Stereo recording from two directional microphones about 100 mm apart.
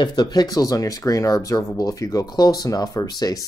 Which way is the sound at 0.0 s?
45° left (ahead or behind).